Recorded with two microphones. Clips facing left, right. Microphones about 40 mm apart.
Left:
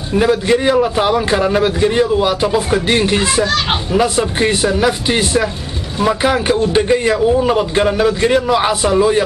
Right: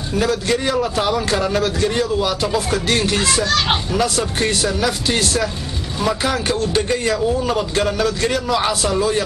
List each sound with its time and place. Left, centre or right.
0.1 s a man's voice: left
3.5 s speech: centre
3.9 s a man's voice: left